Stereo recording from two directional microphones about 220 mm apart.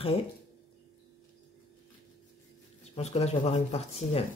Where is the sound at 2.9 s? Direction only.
25° left (ahead or behind).